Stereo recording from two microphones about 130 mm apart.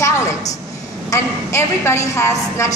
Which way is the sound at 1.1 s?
20° left (ahead or behind).